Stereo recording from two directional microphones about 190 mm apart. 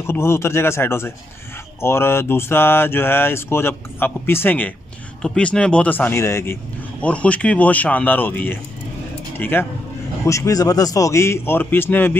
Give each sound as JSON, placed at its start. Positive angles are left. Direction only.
{"t": 0.0, "sound": "a man's voice", "side_deg": 15}